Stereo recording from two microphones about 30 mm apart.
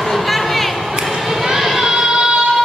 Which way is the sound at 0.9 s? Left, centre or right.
Centre.